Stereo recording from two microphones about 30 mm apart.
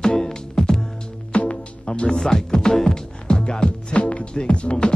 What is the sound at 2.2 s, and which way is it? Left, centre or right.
Music, left.